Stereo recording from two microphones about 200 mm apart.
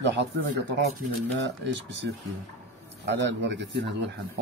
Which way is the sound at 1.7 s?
65° right (ahead or behind).